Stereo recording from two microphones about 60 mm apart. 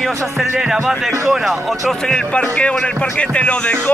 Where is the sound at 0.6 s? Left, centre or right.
Centre.